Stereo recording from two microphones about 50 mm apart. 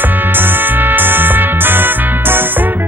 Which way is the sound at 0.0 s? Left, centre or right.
Right.